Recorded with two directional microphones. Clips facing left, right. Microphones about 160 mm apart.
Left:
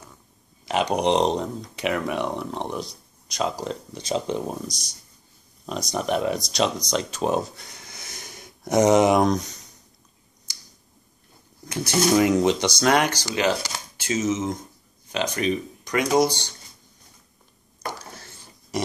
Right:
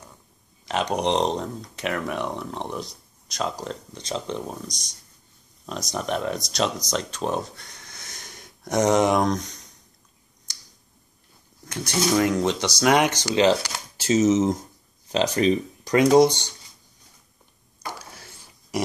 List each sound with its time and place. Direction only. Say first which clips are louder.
0.7 s speech: left 2 dB; 5° left (ahead or behind)
4.6 s speech: left 3 dB; 5° left (ahead or behind)
10.5 s finger snapping: left 1 dB; 5° left (ahead or behind)
11.6 s speech: left 3 dB; 5° left (ahead or behind)
12.9 s speech: right 2 dB; 20° right (ahead or behind)
17.9 s a sound: left 2 dB; 10° right (ahead or behind)